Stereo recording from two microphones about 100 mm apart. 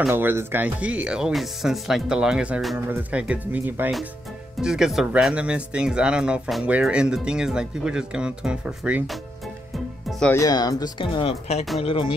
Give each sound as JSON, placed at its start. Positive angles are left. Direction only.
{"t": 0.1, "sound": "speech", "side_deg": -20}
{"t": 4.6, "sound": "speech", "side_deg": -5}
{"t": 10.3, "sound": "speech", "side_deg": 40}
{"t": 11.1, "sound": "speech", "side_deg": 80}
{"t": 11.8, "sound": "speech", "side_deg": 70}